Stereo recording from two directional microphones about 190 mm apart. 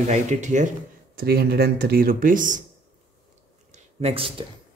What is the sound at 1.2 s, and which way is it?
Speech, 55° right (ahead or behind).